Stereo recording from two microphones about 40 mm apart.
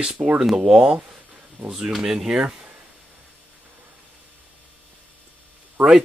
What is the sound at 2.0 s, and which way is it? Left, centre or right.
Speech, centre.